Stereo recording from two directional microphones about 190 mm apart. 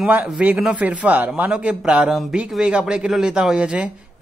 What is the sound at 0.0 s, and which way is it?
A man's voice, 5° right (ahead or behind).